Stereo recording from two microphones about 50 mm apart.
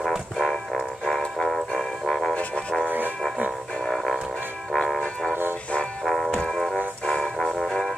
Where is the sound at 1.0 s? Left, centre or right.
Centre.